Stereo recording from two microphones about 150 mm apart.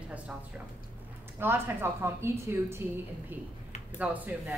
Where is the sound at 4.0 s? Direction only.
10° right (ahead or behind).